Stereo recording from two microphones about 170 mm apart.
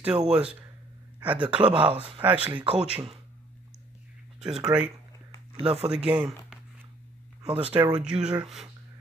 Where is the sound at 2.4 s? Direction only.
30° right (ahead or behind).